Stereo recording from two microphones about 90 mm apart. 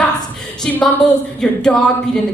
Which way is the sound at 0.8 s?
10° left (ahead or behind).